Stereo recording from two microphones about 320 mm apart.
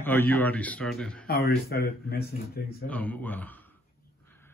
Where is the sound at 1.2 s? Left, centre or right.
Left.